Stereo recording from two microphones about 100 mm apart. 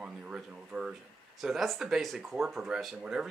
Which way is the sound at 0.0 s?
10° right (ahead or behind).